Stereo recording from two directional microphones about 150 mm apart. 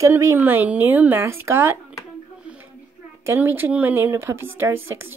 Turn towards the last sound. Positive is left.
turn(degrees=-15)  # may be behind; listen again after turning